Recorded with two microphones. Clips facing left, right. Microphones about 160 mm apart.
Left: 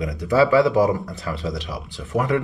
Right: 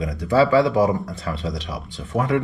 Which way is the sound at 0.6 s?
Centre (ahead or behind).